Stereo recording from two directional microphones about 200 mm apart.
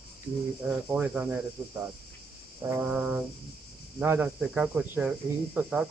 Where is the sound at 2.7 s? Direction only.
10° right (ahead or behind).